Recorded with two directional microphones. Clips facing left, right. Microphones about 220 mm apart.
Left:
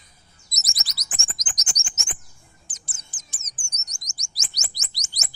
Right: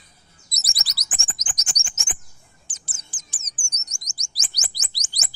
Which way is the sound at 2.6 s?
30° right (ahead or behind).